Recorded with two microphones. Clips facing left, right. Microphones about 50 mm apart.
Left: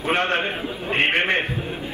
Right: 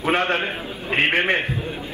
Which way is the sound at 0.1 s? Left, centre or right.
Left.